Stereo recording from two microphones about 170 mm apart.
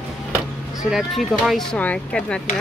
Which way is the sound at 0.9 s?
Centre (ahead or behind).